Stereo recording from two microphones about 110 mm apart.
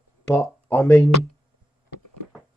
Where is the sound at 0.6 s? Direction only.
25° left (ahead or behind).